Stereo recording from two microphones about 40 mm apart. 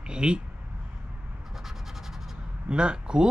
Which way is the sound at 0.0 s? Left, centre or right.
Right.